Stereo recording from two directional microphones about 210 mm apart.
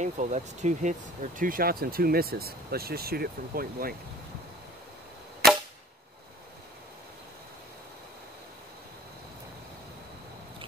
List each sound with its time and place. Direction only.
0.0 s speech: 35° right (ahead or behind)